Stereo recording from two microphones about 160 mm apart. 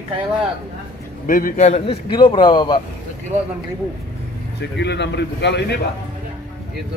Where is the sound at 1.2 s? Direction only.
60° left (ahead or behind).